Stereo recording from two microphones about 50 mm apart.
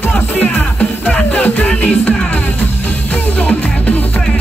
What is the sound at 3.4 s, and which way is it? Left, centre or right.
Music, left.